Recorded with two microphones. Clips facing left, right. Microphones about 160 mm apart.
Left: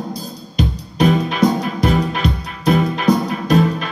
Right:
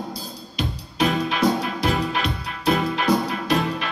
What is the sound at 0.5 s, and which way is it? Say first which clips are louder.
Music: left 6 dB; 45° left (ahead or behind).